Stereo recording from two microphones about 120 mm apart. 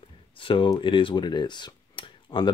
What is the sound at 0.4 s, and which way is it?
Speech, 45° left (ahead or behind).